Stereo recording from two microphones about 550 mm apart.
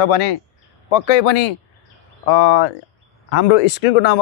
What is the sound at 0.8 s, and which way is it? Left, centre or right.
Speech, left.